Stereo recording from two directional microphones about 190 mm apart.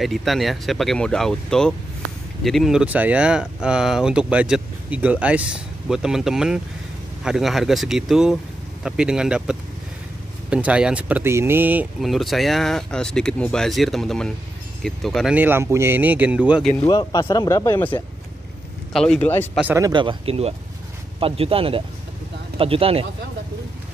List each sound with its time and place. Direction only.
0.0 s speech: centre (ahead or behind)
16.8 s speech: 20° left (ahead or behind)
19.5 s speech: 5° right (ahead or behind)
19.8 s speech: 25° right (ahead or behind)